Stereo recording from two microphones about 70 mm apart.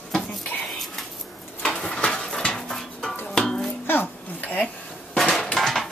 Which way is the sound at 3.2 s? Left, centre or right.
Centre.